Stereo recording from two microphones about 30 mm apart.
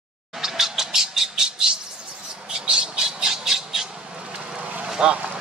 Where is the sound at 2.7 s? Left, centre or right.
Right.